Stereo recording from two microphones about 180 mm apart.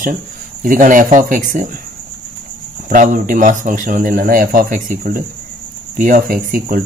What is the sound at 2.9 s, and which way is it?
A man's voice, 50° right (ahead or behind).